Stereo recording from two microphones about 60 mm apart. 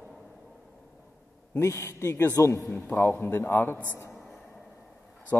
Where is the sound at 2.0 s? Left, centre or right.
Left.